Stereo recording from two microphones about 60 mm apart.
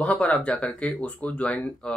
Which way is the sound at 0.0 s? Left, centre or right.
Left.